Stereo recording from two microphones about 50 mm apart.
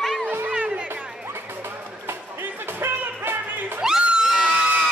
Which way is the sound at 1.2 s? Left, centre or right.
Right.